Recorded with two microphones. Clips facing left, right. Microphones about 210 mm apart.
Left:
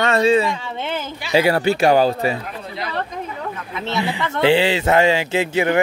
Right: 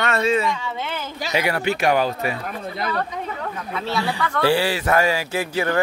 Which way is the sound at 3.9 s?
20° left (ahead or behind).